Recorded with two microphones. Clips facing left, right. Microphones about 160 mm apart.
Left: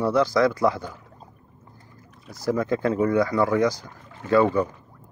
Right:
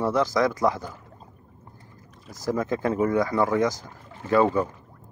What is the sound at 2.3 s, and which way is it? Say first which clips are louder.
Speech: left 2 dB; 20° right (ahead or behind).